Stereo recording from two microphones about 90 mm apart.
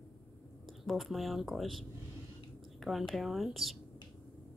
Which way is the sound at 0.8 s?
Centre (ahead or behind).